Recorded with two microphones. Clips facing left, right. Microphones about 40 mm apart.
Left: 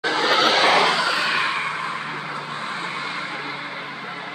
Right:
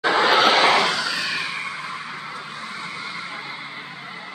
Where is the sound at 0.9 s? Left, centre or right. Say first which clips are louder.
Left 4 dB; left.